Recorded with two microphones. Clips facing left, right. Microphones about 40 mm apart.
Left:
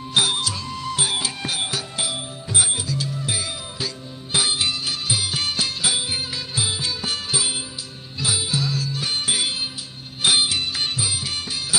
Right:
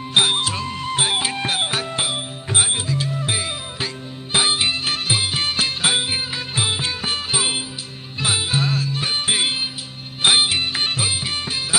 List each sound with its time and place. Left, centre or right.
0.1 s music: right